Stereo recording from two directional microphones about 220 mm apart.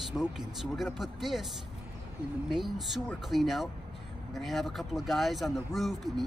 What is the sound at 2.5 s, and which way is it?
Speech, centre (ahead or behind).